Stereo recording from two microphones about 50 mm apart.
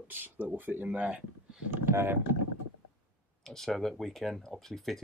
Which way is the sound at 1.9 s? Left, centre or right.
Right.